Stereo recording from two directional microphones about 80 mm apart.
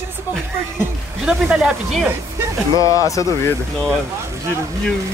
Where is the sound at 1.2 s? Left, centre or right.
Centre.